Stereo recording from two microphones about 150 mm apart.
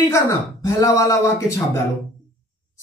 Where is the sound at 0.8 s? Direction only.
20° left (ahead or behind).